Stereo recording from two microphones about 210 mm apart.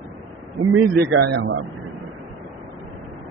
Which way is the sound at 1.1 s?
55° right (ahead or behind).